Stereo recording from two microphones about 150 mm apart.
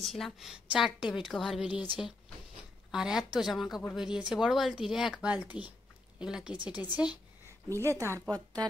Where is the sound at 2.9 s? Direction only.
5° right (ahead or behind).